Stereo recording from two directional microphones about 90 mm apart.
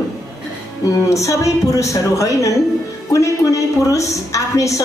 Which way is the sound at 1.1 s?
35° left (ahead or behind).